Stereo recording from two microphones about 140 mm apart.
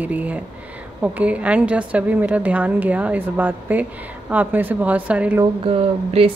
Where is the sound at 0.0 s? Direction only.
10° right (ahead or behind).